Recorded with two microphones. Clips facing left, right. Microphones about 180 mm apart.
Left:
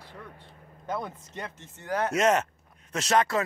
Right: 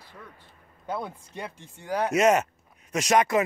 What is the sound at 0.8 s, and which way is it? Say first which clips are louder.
Speech: right 1 dB; 10° right (ahead or behind).